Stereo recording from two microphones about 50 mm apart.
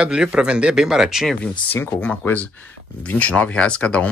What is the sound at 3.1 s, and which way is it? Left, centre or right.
Speech, left.